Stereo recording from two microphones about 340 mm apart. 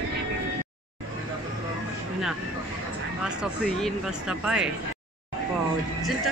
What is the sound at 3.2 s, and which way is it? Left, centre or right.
Speech, centre.